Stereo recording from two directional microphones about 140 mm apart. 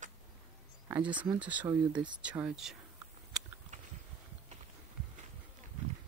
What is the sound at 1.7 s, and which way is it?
Speech, 30° right (ahead or behind).